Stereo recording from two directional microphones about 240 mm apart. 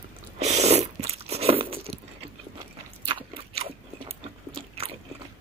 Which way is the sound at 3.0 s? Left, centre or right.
Right.